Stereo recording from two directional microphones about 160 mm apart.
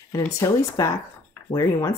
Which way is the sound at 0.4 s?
20° left (ahead or behind).